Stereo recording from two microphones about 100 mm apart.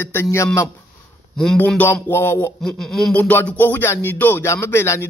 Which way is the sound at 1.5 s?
15° left (ahead or behind).